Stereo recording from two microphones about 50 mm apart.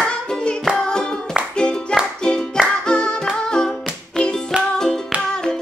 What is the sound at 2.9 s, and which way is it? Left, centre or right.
Singing, centre.